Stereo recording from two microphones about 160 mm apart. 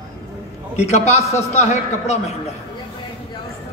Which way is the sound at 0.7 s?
45° left (ahead or behind).